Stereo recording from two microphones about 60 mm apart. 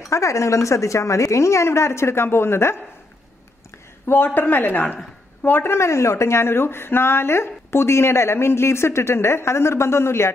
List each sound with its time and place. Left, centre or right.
0.1 s a woman's voice: left
4.1 s speech: left